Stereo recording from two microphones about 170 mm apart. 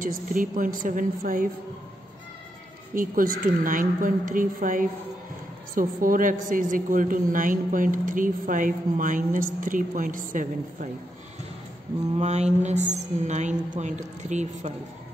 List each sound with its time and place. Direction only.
0.0 s a woman's voice: 50° right (ahead or behind)
2.9 s a woman's voice: 55° right (ahead or behind)
12.2 s a woman's voice: 40° right (ahead or behind)